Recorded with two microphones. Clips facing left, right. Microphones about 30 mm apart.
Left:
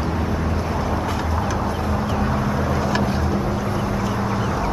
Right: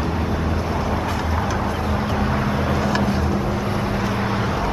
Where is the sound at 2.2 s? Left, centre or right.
Right.